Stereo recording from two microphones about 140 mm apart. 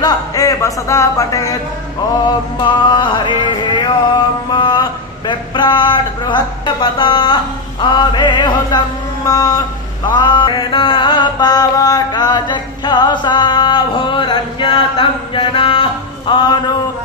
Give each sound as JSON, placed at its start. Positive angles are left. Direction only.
{"t": 0.0, "sound": "speech", "side_deg": 25}
{"t": 2.2, "sound": "mantra", "side_deg": 35}